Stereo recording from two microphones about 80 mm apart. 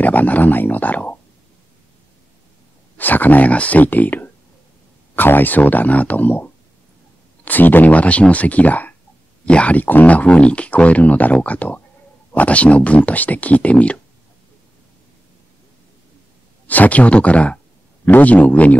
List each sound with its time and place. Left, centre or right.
0.0 s speech: left
3.0 s speech: left
16.6 s speech: left